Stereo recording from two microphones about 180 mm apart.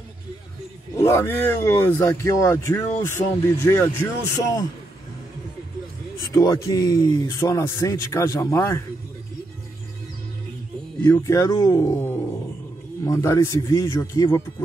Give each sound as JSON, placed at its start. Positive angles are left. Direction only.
{"t": 0.9, "sound": "speech", "side_deg": 15}
{"t": 6.3, "sound": "speech", "side_deg": 20}
{"t": 11.1, "sound": "speech", "side_deg": 15}